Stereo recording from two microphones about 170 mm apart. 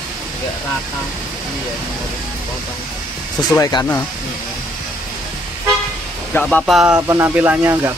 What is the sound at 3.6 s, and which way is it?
Speech, 25° left (ahead or behind).